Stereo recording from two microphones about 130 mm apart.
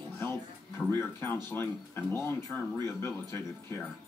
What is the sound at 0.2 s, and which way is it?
Music, 15° left (ahead or behind).